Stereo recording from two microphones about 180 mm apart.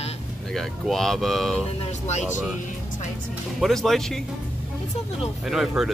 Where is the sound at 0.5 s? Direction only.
Centre (ahead or behind).